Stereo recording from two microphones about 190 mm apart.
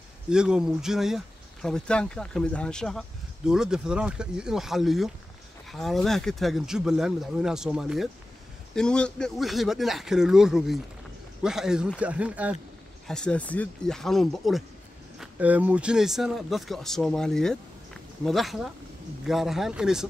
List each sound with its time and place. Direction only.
0.3 s speech: 5° right (ahead or behind)
13.0 s speech: 5° left (ahead or behind)